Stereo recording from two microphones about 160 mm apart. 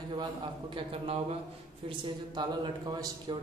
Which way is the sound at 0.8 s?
35° right (ahead or behind).